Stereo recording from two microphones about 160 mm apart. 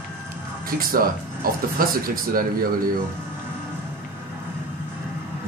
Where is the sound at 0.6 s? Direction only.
65° right (ahead or behind).